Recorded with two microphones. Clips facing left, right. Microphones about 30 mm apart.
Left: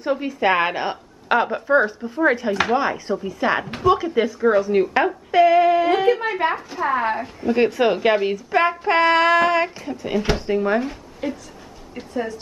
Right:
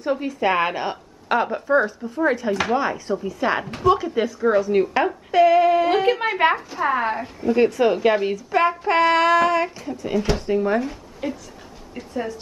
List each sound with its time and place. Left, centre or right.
0.0 s a woman's voice: centre
6.0 s a woman's voice: centre
6.8 s speech: centre
7.1 s a woman's voice: centre
7.5 s a woman's voice: left
11.2 s speech: centre